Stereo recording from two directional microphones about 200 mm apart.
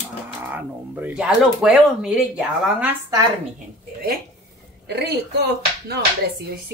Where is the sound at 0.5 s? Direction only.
5° right (ahead or behind).